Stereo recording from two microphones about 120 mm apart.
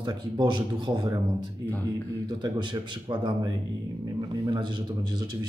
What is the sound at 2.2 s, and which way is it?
A man's voice, 40° right (ahead or behind).